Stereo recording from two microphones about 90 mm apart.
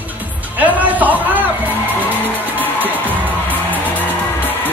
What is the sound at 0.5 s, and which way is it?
Speech, 20° right (ahead or behind).